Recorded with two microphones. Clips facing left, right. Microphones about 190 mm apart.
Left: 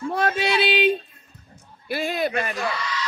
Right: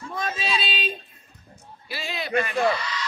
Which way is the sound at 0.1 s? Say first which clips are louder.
Left 6 dB; 70° left (ahead or behind).